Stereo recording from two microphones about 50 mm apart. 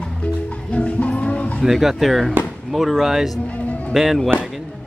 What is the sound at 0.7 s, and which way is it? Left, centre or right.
Music, left.